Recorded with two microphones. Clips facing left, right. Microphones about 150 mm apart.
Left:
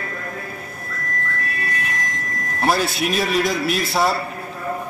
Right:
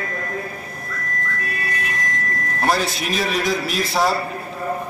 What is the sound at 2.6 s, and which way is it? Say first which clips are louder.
A man's voice: left 2 dB; 5° left (ahead or behind).